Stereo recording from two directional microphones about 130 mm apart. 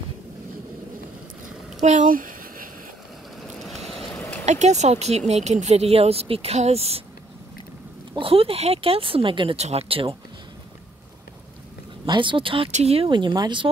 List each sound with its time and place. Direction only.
1.8 s a sound: 65° right (ahead or behind); by 2.7 s 90° right
4.5 s speech: 60° right (ahead or behind)
8.2 s speech: 45° right (ahead or behind)
9.6 s speech: 55° right (ahead or behind)
12.1 s speech: 40° right (ahead or behind)